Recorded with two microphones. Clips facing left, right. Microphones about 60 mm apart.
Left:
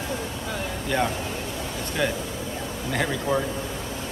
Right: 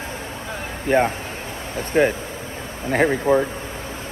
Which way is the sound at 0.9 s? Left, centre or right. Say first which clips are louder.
Right 7 dB; right.